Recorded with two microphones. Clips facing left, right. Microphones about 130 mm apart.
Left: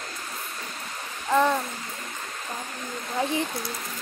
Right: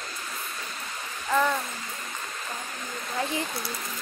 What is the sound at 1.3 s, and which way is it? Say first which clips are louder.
Speech: left 3 dB; 20° left (ahead or behind).